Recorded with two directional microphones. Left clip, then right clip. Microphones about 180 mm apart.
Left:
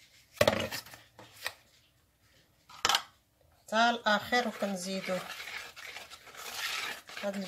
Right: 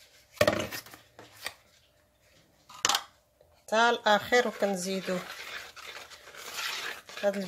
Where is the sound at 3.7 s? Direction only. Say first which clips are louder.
Right 3 dB; 55° right (ahead or behind).